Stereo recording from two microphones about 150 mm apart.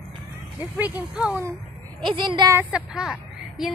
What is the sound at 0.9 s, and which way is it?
Speech, 10° right (ahead or behind).